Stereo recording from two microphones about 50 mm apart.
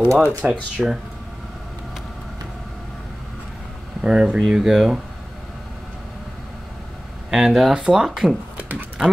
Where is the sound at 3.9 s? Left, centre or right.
Centre.